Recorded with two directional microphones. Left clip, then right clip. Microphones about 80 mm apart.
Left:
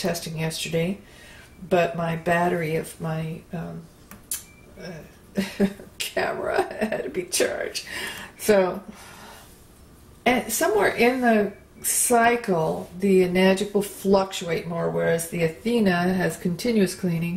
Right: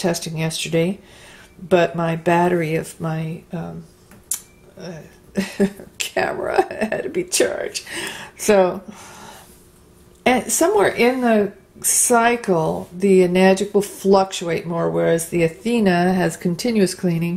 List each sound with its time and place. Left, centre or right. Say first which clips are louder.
0.0 s speech: right 5 dB; right
5.3 s speech: right 4 dB; right
10.2 s speech: right 5 dB; right